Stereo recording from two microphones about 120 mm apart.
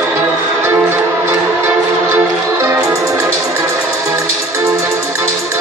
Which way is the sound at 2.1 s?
20° right (ahead or behind).